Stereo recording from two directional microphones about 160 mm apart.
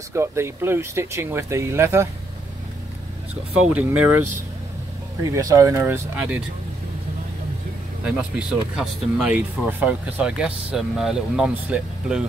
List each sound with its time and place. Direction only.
0.1 s speech: 15° right (ahead or behind)
3.7 s speech: 10° right (ahead or behind)
5.2 s speech: 20° right (ahead or behind)
8.0 s speech: 5° right (ahead or behind)